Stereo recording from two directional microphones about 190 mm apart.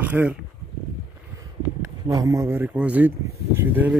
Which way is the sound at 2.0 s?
15° right (ahead or behind).